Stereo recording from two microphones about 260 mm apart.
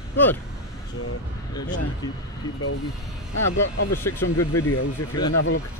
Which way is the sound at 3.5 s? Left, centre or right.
Left.